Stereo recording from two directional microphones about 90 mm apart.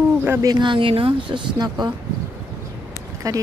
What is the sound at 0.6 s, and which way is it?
Speech, 70° right (ahead or behind).